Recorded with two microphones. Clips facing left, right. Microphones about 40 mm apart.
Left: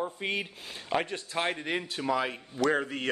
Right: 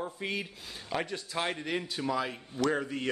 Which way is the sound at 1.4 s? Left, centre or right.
Left.